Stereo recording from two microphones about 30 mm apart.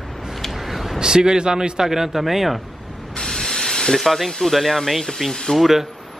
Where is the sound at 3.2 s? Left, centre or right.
Centre.